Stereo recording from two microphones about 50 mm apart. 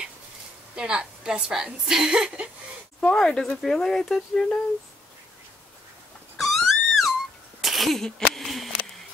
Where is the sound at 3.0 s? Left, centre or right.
Centre.